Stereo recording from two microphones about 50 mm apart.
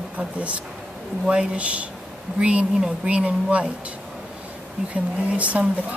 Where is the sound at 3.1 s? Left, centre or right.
Right.